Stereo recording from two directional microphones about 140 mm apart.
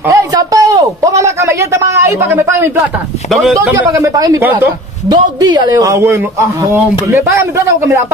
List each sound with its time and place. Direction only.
0.1 s a sound: 25° right (ahead or behind)
3.3 s a man's voice: centre (ahead or behind)
3.9 s speech: 25° right (ahead or behind)